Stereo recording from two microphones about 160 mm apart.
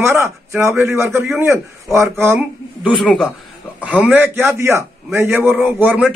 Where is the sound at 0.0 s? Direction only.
15° right (ahead or behind).